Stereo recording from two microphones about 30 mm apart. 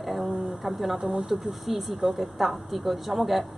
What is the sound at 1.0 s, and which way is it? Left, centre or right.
Speech, right.